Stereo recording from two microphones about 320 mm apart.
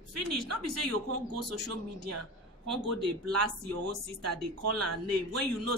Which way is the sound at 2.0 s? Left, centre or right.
Right.